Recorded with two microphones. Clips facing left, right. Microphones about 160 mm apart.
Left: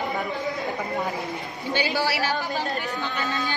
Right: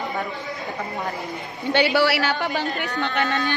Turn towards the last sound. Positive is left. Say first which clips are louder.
# right 5 dB
turn(degrees=-75)  # may be behind; listen again after turning